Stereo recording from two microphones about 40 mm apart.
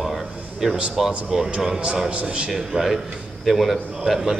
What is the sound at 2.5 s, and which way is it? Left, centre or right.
Speech, centre.